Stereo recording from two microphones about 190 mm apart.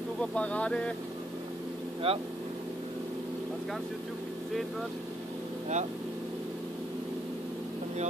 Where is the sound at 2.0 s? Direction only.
30° right (ahead or behind).